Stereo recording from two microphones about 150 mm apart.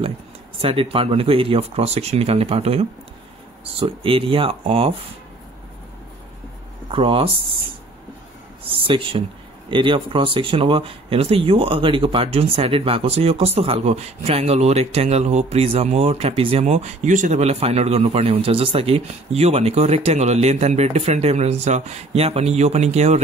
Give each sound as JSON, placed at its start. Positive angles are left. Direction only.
{"t": 0.6, "sound": "speech", "side_deg": -35}
{"t": 6.9, "sound": "speech", "side_deg": -35}
{"t": 8.6, "sound": "speech", "side_deg": -35}